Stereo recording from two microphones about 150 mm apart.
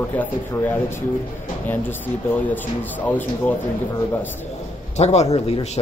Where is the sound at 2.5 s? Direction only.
10° left (ahead or behind).